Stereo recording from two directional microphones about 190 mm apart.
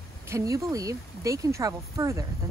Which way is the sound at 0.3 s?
15° right (ahead or behind).